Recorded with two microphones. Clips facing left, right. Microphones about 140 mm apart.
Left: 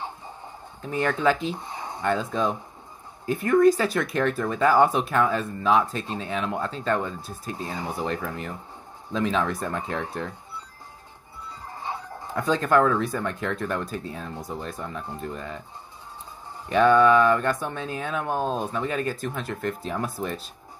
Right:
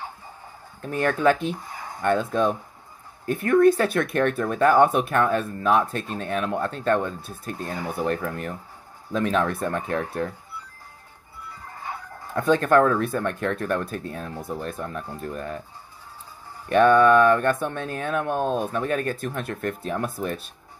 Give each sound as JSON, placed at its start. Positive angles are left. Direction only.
{"t": 0.8, "sound": "speech", "side_deg": -60}
{"t": 1.5, "sound": "a sound", "side_deg": 25}
{"t": 2.0, "sound": "speech", "side_deg": -60}
{"t": 11.8, "sound": "chicken", "side_deg": 25}
{"t": 12.4, "sound": "speech", "side_deg": -60}
{"t": 16.6, "sound": "speech", "side_deg": -60}